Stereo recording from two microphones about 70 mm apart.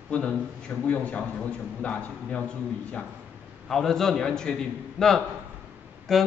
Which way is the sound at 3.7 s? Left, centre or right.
Centre.